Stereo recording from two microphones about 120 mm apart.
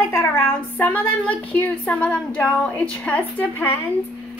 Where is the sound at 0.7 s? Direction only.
15° left (ahead or behind).